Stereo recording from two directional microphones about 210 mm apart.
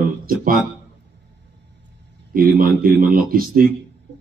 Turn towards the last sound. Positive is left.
turn(degrees=-45)  # may be behind; listen again after turning